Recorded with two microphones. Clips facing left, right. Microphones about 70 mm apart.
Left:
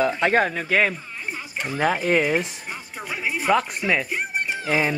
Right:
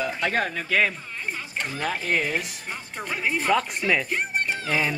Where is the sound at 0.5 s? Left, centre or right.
Centre.